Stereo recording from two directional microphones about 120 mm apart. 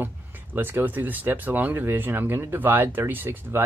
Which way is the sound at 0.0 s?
15° right (ahead or behind).